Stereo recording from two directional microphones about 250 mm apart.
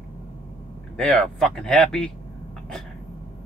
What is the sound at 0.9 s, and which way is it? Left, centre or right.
Speech, centre.